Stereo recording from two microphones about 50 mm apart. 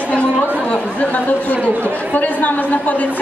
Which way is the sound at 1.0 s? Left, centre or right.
Left.